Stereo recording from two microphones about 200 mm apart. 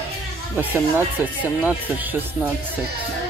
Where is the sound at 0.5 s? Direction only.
10° right (ahead or behind).